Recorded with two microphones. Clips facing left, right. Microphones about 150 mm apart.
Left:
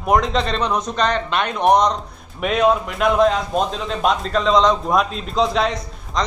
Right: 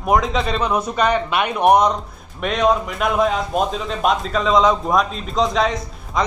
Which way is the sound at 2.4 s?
5° left (ahead or behind).